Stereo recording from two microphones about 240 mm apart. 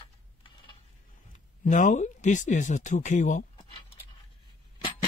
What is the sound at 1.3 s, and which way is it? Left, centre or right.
Speech, left.